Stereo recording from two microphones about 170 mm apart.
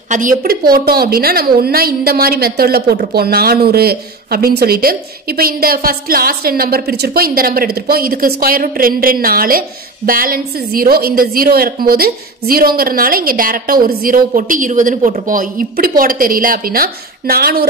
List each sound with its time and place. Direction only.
0.1 s a woman's voice: 50° right (ahead or behind)